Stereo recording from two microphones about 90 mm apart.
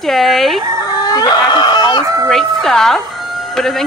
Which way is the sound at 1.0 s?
45° left (ahead or behind).